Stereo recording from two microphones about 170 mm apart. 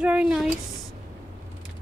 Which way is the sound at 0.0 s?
5° right (ahead or behind).